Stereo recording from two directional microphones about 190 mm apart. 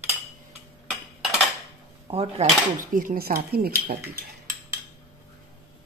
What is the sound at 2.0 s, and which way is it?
Speech, 30° right (ahead or behind).